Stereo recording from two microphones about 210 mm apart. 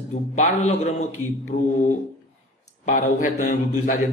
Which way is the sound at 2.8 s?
35° left (ahead or behind).